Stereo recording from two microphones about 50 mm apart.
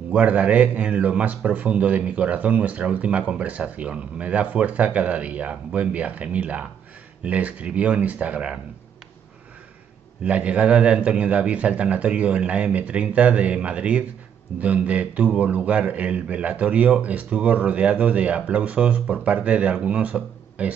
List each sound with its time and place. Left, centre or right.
0.1 s a man's voice: right
10.2 s a man's voice: right